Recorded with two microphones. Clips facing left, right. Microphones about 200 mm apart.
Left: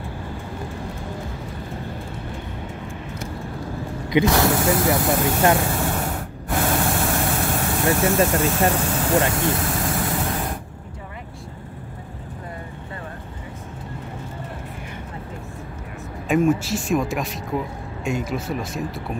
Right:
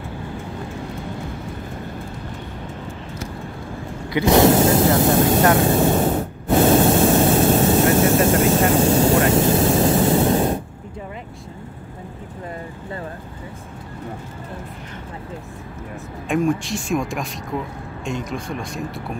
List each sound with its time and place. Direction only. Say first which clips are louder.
4.3 s speech: right 6 dB; 25° right (ahead or behind)
5.6 s a sound: right 7 dB; 25° right (ahead or behind)
16.3 s speech: left 1 dB; 5° left (ahead or behind)